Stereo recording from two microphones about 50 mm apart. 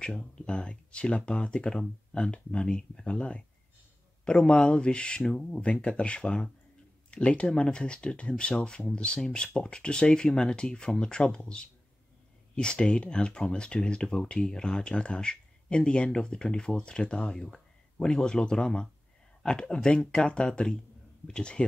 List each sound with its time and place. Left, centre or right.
0.0 s speech: centre